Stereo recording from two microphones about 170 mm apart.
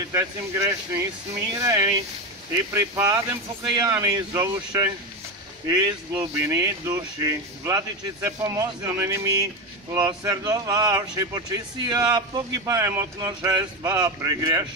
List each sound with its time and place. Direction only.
0.1 s speech: 15° right (ahead or behind)
6.1 s speech: 15° right (ahead or behind)